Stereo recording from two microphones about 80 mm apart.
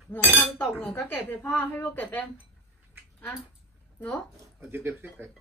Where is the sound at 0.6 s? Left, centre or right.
Centre.